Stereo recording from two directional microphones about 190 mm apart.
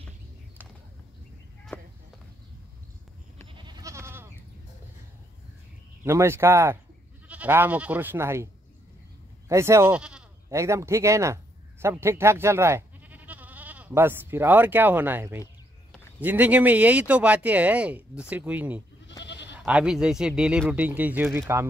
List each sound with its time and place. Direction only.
1.7 s clip-clop: 10° left (ahead or behind)
3.5 s goat: 20° right (ahead or behind)
6.0 s speech: 15° right (ahead or behind)
9.5 s speech: 15° right (ahead or behind)
10.5 s speech: 15° right (ahead or behind)
19.2 s goat: 65° left (ahead or behind)
19.5 s speech: 5° right (ahead or behind)